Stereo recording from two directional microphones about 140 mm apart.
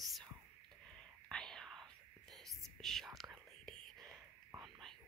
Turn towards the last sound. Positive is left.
turn(degrees=5)  # may be behind; listen again after turning